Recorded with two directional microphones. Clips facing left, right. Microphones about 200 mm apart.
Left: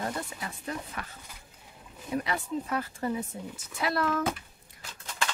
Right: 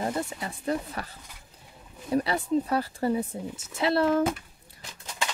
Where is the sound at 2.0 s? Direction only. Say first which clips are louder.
Right 6 dB; 35° right (ahead or behind).